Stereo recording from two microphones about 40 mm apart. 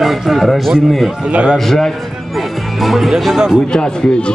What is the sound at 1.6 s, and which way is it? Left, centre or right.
A man's voice, centre.